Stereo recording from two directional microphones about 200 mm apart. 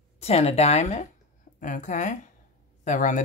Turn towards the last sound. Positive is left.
turn(degrees=35)  # may be behind; listen again after turning